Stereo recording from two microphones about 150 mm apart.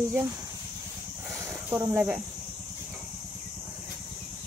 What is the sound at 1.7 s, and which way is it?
Speech, 10° right (ahead or behind).